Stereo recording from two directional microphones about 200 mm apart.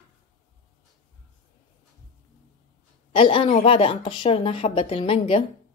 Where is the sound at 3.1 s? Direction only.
25° left (ahead or behind).